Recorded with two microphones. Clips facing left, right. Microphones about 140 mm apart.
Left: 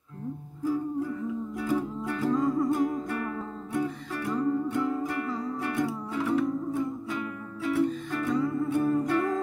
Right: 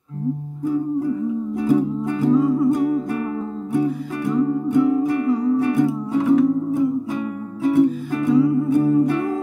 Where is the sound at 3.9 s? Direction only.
10° right (ahead or behind).